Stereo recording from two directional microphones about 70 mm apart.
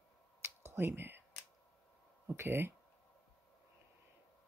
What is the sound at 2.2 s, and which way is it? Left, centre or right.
Speech, right.